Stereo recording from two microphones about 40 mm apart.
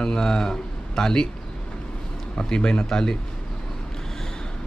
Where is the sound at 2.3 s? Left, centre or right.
Left.